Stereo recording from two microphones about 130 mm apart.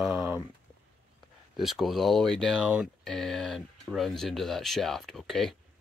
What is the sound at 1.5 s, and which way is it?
Speech, centre (ahead or behind).